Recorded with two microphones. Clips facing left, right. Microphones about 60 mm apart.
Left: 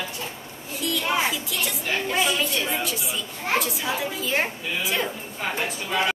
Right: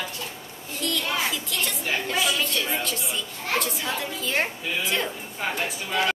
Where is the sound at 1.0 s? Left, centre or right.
Centre.